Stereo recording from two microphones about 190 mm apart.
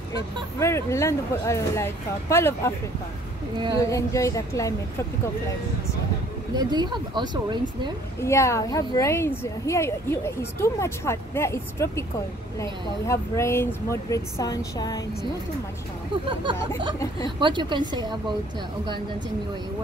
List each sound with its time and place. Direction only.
0.1 s a woman's voice: 15° left (ahead or behind)
3.8 s a woman's voice: 15° left (ahead or behind)
6.5 s speech: 20° right (ahead or behind)
8.2 s a woman's voice: 15° left (ahead or behind)
17.4 s speech: 25° right (ahead or behind)